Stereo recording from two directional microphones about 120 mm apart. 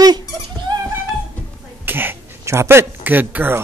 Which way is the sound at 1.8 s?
15° right (ahead or behind).